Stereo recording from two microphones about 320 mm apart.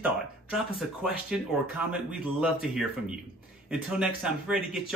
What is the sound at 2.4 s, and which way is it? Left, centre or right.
Speech, centre.